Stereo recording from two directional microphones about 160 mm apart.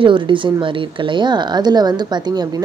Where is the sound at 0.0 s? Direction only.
30° right (ahead or behind).